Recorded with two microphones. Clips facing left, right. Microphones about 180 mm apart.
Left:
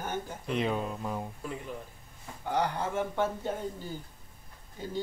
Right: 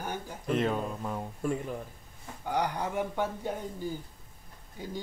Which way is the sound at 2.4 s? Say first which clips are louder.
Even; 15° right (ahead or behind).